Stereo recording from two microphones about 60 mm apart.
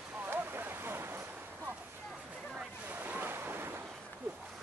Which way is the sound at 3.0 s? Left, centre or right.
Right.